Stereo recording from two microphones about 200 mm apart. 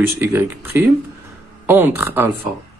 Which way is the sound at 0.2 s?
10° right (ahead or behind).